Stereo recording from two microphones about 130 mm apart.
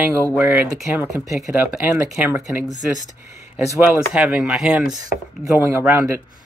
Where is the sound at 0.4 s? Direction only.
15° right (ahead or behind).